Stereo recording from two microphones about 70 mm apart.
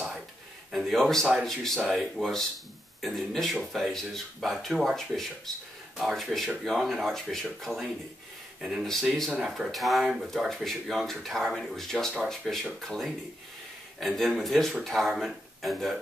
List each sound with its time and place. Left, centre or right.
0.7 s speech: centre
9.3 s speech: centre